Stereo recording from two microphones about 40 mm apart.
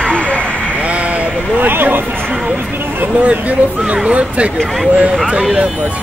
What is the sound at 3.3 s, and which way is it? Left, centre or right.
Speech, right.